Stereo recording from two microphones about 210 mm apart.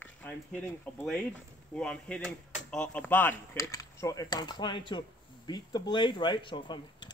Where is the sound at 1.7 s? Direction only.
5° left (ahead or behind).